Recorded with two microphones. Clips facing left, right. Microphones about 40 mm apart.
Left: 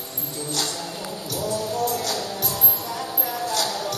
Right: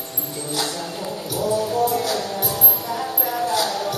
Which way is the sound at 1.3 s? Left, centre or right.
Centre.